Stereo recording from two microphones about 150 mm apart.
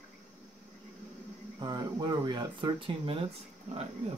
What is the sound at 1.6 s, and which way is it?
Speech, 30° right (ahead or behind).